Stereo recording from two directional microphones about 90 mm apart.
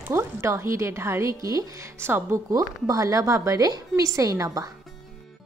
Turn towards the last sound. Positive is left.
turn(degrees=-40)  # may be behind; listen again after turning